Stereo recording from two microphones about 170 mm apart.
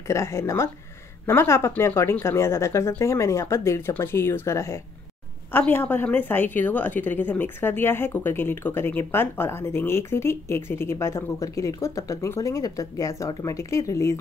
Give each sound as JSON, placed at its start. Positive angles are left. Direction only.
{"t": 0.1, "sound": "a woman's voice", "side_deg": 15}